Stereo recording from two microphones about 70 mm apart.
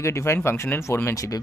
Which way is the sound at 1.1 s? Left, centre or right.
Left.